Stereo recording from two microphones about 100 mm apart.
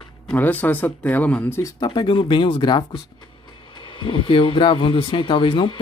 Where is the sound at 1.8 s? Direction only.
55° left (ahead or behind).